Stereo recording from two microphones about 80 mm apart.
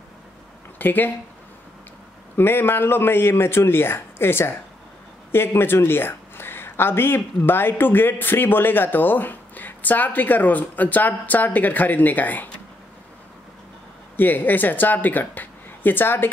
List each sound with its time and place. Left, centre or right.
0.7 s speech: left
2.3 s speech: left
14.1 s speech: left